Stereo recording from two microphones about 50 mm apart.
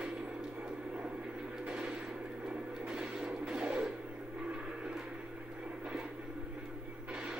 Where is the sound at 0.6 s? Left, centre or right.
Right.